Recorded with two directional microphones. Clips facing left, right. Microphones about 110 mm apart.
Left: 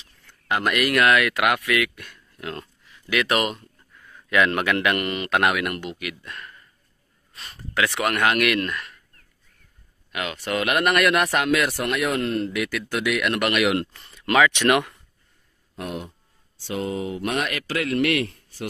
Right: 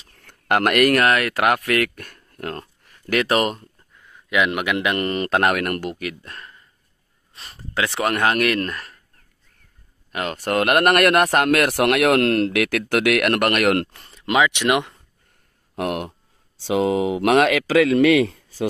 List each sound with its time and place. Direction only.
0.0 s speech: 60° right (ahead or behind); by 3.6 s 40° right (ahead or behind)
3.9 s a sound: 15° right (ahead or behind)
4.9 s speech: 35° right (ahead or behind)
10.1 s speech: 45° right (ahead or behind)
14.2 s speech: 20° right (ahead or behind)
15.7 s speech: 75° right (ahead or behind)
16.5 s speech: 90° right